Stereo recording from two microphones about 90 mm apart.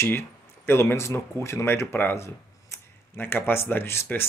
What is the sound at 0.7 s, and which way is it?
Speech, 25° left (ahead or behind).